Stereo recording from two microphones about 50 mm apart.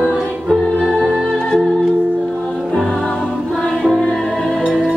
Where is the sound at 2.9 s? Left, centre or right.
Centre.